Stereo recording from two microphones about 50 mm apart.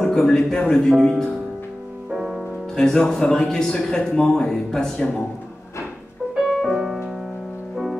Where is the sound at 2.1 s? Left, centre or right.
Centre.